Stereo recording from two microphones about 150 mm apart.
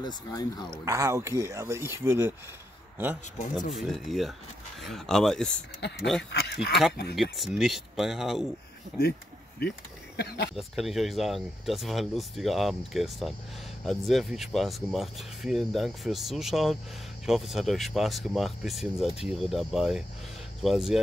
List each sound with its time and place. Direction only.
0.0 s speech: 25° left (ahead or behind)
0.8 s speech: 20° right (ahead or behind); by 6.2 s centre (ahead or behind)
6.3 s speech: 90° left
7.3 s speech: centre (ahead or behind)
10.1 s speech: 90° left
10.5 s speech: centre (ahead or behind)